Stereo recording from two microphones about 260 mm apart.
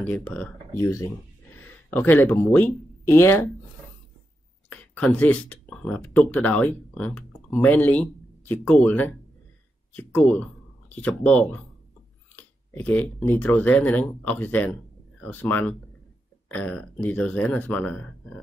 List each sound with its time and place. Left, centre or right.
0.0 s speech: centre
4.6 s speech: centre